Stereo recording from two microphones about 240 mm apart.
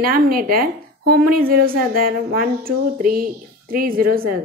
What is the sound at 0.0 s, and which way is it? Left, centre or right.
A woman's voice, right.